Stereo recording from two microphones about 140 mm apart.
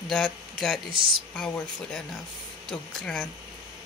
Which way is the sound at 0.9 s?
40° right (ahead or behind).